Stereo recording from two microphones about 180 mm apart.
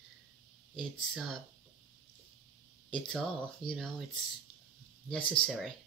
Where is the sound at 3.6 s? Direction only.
25° left (ahead or behind).